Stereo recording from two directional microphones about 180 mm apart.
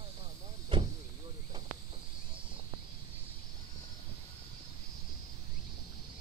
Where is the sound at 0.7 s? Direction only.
25° right (ahead or behind).